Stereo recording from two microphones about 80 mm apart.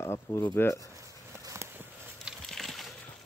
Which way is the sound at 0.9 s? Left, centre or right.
Right.